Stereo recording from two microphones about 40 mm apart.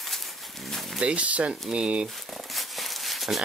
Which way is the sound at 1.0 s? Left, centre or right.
Right.